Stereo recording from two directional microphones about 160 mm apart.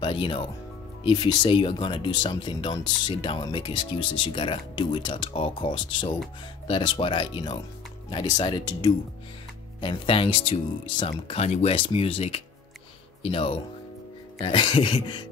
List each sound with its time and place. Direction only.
0.0 s speech: 30° left (ahead or behind)